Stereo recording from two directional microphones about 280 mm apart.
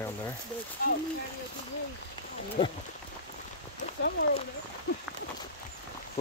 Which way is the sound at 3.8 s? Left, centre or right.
Left.